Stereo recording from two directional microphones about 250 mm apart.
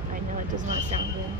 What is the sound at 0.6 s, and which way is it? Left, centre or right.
Speech, right.